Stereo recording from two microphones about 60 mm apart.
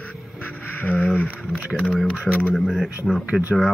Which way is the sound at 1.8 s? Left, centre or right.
Centre.